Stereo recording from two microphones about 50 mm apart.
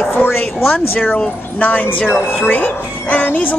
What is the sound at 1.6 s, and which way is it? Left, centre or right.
Speech, left.